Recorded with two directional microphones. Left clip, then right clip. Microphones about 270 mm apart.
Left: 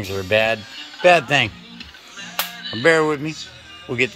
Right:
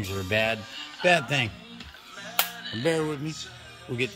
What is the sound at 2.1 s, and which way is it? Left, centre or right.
Music, right.